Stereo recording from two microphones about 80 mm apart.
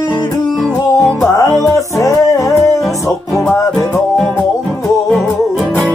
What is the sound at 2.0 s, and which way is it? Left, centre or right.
Music, left.